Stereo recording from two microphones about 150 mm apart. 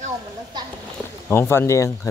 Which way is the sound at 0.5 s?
30° right (ahead or behind).